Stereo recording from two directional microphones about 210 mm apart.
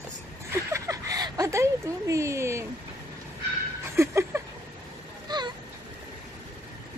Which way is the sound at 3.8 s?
10° right (ahead or behind).